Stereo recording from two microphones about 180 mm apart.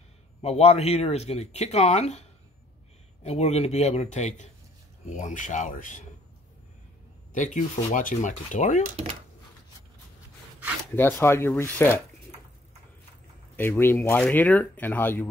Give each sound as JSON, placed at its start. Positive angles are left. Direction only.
{"t": 0.4, "sound": "speech", "side_deg": 35}
{"t": 3.3, "sound": "speech", "side_deg": 35}
{"t": 7.3, "sound": "speech", "side_deg": 45}
{"t": 11.0, "sound": "speech", "side_deg": 10}
{"t": 13.6, "sound": "speech", "side_deg": 10}